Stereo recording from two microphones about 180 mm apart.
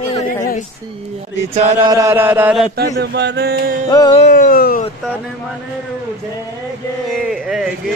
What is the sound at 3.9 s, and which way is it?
Music, 25° left (ahead or behind).